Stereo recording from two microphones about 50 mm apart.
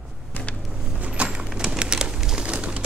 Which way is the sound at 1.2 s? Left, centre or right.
Centre.